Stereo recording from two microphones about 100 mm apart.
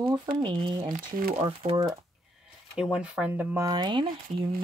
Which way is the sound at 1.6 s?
90° right.